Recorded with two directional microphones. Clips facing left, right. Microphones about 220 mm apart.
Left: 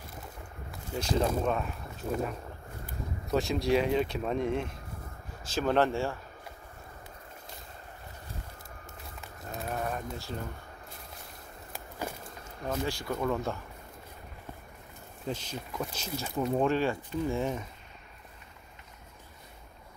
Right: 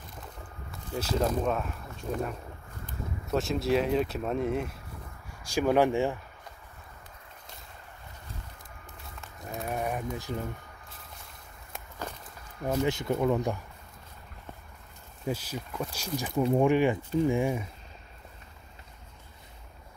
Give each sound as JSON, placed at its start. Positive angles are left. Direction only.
{"t": 0.7, "sound": "speech", "side_deg": 0}
{"t": 9.4, "sound": "a sound", "side_deg": -20}
{"t": 12.8, "sound": "speech", "side_deg": -20}
{"t": 15.2, "sound": "speech", "side_deg": -10}